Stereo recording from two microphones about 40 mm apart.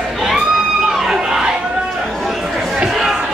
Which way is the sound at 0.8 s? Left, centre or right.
Centre.